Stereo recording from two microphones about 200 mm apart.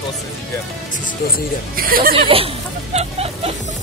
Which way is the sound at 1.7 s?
45° right (ahead or behind).